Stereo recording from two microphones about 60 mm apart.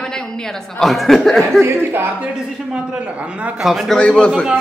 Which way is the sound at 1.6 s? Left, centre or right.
Right.